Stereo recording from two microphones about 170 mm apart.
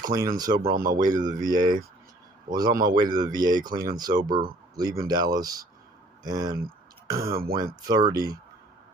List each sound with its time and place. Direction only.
0.0 s speech: 20° right (ahead or behind)
0.6 s speech: 60° right (ahead or behind)
0.9 s speech: 25° right (ahead or behind)
2.7 s speech: 55° right (ahead or behind)
3.0 s speech: 25° right (ahead or behind)
7.2 s speech: 60° right (ahead or behind)
7.6 s speech: 20° right (ahead or behind)